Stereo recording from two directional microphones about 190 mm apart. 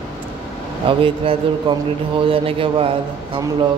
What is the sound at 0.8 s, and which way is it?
Speech, 30° right (ahead or behind).